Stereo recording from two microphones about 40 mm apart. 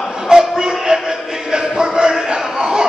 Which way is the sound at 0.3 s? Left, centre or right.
Centre.